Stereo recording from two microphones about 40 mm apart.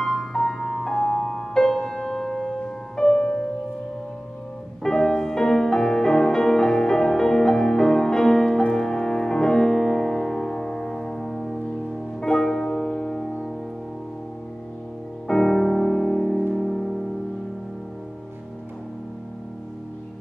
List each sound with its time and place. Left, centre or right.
0.0 s music: centre
4.8 s music: centre
12.4 s music: centre
15.2 s music: centre